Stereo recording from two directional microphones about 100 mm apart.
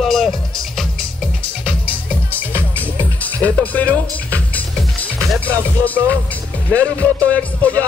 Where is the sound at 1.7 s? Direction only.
15° left (ahead or behind).